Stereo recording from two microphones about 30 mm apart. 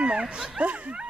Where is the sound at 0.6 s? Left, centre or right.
Right.